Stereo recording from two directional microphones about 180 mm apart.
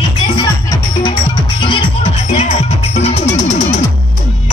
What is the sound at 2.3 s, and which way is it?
Music, 40° left (ahead or behind).